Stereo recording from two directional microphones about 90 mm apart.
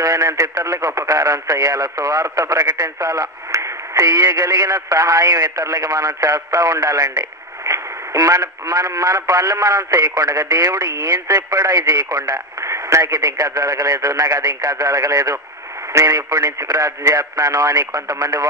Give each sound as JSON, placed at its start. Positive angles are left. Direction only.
{"t": 0.0, "sound": "speech", "side_deg": -45}
{"t": 12.5, "sound": "radio", "side_deg": -35}
{"t": 13.0, "sound": "speech", "side_deg": -50}